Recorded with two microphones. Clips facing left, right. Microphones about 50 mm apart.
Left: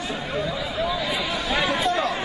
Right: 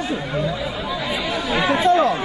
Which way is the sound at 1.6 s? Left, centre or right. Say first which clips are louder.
Right 10 dB; centre.